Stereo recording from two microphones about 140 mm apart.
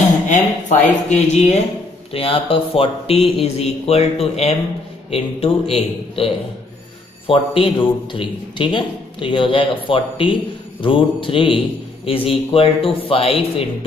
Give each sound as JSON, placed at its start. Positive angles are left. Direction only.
{"t": 0.3, "sound": "speech", "side_deg": 55}
{"t": 2.1, "sound": "a man's voice", "side_deg": 40}